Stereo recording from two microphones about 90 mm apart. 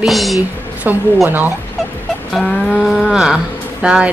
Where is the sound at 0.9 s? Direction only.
20° right (ahead or behind).